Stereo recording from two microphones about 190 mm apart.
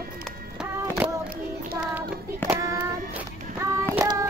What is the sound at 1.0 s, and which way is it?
Child singing, 10° right (ahead or behind).